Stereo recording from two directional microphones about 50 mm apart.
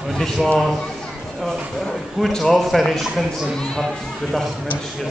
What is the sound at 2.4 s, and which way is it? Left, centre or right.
Speech, centre.